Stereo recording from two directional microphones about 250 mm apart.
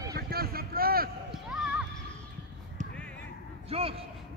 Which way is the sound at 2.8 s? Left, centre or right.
Right.